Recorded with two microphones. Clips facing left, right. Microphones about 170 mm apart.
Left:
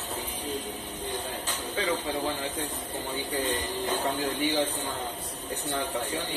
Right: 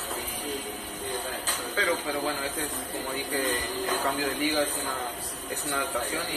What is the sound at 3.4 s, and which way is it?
Speech, 25° left (ahead or behind).